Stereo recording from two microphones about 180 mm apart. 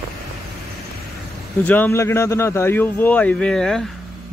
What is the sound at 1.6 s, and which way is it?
Speech, 10° left (ahead or behind).